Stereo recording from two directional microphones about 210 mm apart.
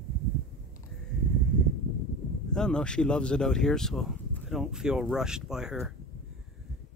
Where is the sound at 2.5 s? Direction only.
5° left (ahead or behind).